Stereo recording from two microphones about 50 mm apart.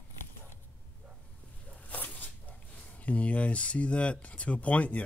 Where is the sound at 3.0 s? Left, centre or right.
Left.